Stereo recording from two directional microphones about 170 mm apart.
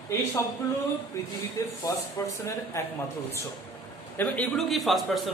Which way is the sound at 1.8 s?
20° left (ahead or behind).